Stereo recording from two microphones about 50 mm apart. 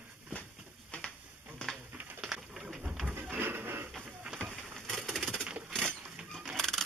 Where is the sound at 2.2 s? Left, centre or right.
Centre.